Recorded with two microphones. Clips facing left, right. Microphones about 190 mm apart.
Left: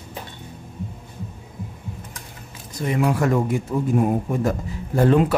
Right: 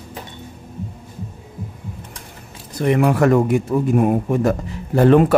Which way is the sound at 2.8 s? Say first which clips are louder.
Right 5 dB; 65° right (ahead or behind).